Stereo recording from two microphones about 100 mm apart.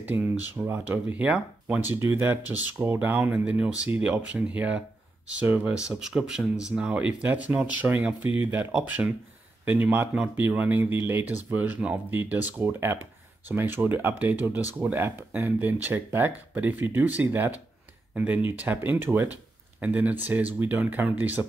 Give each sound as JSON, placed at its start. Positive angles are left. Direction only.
{"t": 0.0, "sound": "speech", "side_deg": -20}